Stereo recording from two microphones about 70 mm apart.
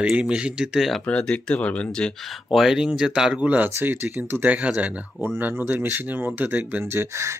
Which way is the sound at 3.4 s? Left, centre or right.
Right.